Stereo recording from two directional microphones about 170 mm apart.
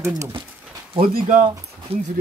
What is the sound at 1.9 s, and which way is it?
Speech, 35° right (ahead or behind).